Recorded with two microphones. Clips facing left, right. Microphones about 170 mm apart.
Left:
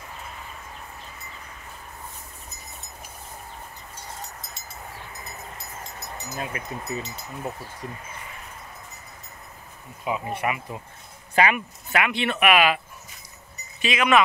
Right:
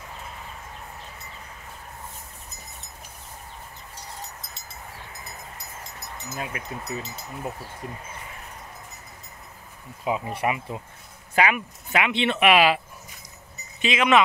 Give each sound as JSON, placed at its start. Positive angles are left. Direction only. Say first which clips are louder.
{"t": 6.3, "sound": "speech", "louder": "left 1 dB", "side_deg": -5}
{"t": 10.0, "sound": "speech", "louder": "right 1 dB", "side_deg": -25}
{"t": 11.3, "sound": "speech", "louder": "left 1 dB", "side_deg": -5}
{"t": 11.9, "sound": "speech", "louder": "right 1 dB", "side_deg": -20}